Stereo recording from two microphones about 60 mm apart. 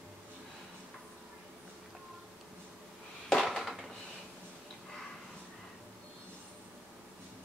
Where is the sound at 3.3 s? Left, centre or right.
Centre.